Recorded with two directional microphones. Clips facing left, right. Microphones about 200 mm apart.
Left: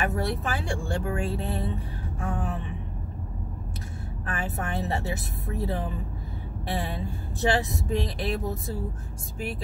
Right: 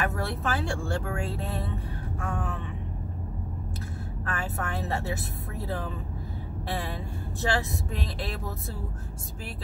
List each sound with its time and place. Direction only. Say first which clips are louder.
0.0 s speech: left 2 dB; 15° left (ahead or behind)
4.3 s speech: left 2 dB; 20° left (ahead or behind)